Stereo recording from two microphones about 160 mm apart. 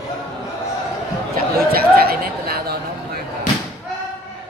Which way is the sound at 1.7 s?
70° right (ahead or behind).